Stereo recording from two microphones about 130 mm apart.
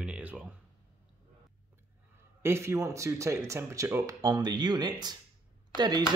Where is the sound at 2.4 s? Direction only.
20° right (ahead or behind).